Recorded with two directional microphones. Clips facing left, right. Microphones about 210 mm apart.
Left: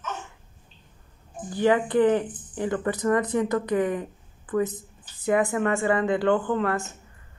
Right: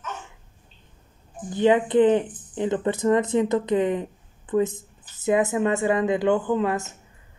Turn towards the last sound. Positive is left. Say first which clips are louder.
# right 2 dB
turn(degrees=-20)  # may be behind; listen again after turning